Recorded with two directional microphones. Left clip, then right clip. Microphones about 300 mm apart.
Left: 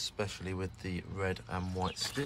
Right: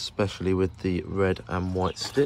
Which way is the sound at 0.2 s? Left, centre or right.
Centre.